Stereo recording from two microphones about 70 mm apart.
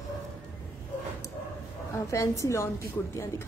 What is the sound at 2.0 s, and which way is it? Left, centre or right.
Speech, left.